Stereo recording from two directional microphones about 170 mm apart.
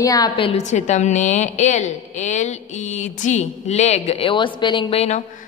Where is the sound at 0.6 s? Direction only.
45° left (ahead or behind).